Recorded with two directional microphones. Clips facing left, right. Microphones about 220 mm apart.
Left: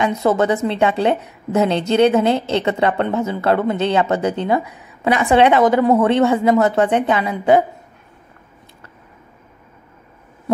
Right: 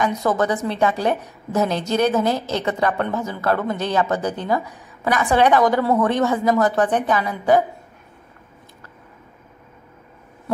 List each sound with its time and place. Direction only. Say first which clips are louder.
0.0 s a woman's voice: left 3 dB; 25° left (ahead or behind)